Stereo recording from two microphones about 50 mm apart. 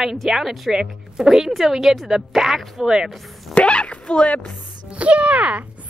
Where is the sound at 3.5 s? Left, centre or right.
Left.